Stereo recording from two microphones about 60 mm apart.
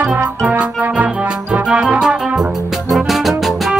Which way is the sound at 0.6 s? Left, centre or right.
Right.